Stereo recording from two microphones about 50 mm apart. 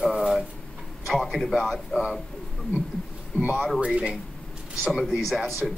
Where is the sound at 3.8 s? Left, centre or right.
Centre.